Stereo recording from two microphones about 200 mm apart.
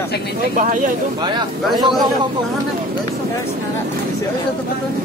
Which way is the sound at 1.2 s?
20° right (ahead or behind).